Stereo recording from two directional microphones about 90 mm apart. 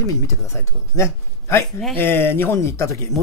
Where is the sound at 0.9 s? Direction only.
30° left (ahead or behind).